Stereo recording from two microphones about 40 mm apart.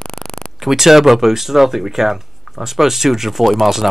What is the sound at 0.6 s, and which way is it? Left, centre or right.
Speech, centre.